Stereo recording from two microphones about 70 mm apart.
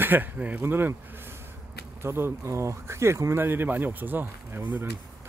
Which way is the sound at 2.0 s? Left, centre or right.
Right.